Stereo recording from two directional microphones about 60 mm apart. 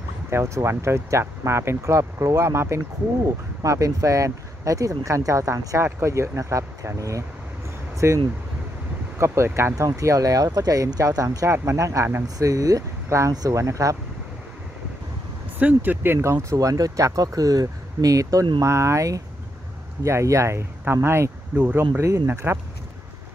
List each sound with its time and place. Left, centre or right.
0.3 s speech: right
3.6 s speech: right
5.8 s speech: right
8.0 s speech: right
9.2 s speech: right
9.8 s speech: right
11.5 s speech: right
12.4 s speech: right
15.6 s speech: right
16.5 s speech: right
20.8 s speech: right